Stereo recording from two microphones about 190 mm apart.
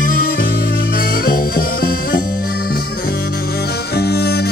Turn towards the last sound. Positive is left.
turn(degrees=55)  # may be behind; listen again after turning